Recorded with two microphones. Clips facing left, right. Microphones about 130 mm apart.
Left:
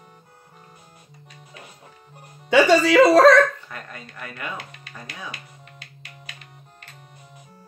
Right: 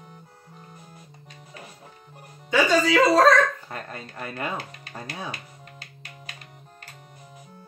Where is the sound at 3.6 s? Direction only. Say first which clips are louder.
Right 2 dB; 30° right (ahead or behind).